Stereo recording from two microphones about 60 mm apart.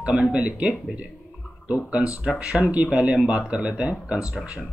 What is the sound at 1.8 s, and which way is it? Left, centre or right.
Speech, right.